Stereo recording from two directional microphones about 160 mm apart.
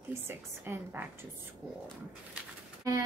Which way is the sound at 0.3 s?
15° right (ahead or behind).